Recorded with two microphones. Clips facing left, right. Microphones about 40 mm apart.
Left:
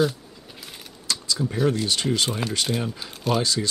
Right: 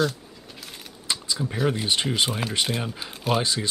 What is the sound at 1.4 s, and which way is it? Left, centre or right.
Speech, centre.